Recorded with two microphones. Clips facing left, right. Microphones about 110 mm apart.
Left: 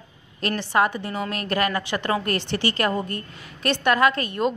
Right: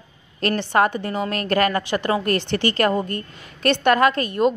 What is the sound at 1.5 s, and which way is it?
A woman's voice, 45° right (ahead or behind).